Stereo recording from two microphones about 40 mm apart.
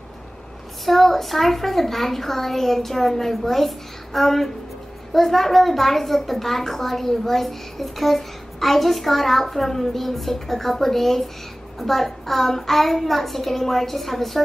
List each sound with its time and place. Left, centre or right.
0.8 s a woman's voice: centre